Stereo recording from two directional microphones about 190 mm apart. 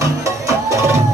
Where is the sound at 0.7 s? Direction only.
15° right (ahead or behind).